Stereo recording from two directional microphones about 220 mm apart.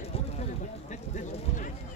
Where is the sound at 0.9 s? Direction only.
35° left (ahead or behind).